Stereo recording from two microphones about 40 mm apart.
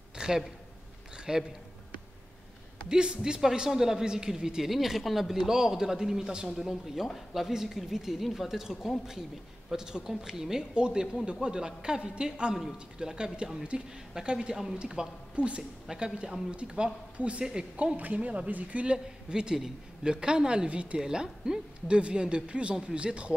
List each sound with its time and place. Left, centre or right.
0.2 s a sound: right
2.9 s a woman's voice: right; by 5.4 s centre
5.4 s a woman's voice: centre
10.7 s a woman's voice: right
15.3 s a woman's voice: right
15.9 s speech: right
17.9 s speech: right
19.3 s speech: centre
21.0 s speech: centre